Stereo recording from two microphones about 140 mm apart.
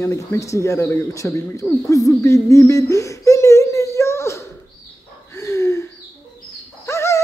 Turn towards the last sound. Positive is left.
turn(degrees=20)  # may be behind; listen again after turning